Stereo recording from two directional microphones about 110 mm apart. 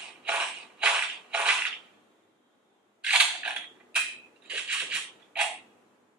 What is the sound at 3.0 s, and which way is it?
Mechanisms, 10° right (ahead or behind).